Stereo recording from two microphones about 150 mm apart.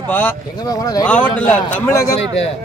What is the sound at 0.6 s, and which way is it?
Speech, 25° left (ahead or behind).